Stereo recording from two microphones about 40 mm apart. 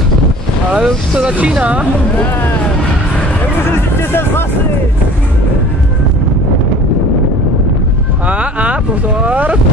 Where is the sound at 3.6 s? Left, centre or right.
Left.